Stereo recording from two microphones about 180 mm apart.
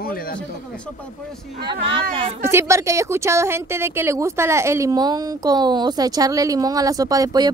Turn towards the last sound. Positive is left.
turn(degrees=-20)  # may be behind; listen again after turning